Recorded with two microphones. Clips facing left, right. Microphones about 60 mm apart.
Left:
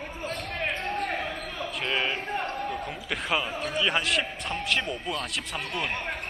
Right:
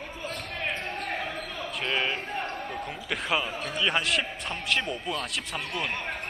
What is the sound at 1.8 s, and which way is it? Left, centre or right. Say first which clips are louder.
Basketball bounce: even; centre.